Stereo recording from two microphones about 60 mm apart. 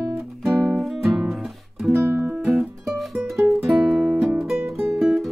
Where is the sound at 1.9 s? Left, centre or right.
Right.